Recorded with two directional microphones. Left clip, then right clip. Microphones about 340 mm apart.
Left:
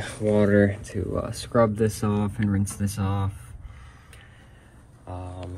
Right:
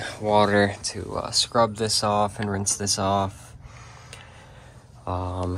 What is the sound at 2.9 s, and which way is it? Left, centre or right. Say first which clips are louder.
Speech: right 11 dB; centre.